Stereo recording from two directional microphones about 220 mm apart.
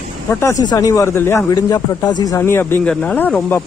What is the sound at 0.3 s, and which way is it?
Speech, 15° left (ahead or behind).